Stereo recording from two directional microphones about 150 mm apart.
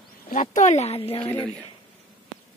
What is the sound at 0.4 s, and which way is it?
Speech, 50° left (ahead or behind).